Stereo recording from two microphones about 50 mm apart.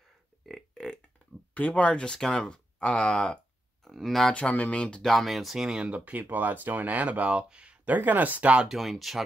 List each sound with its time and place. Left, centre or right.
1.5 s speech: left
2.0 s speech: centre
3.8 s a sound: centre
4.3 s speech: left
5.0 s speech: centre
5.9 s speech: right
6.3 s speech: right
7.8 s speech: right
8.6 s speech: centre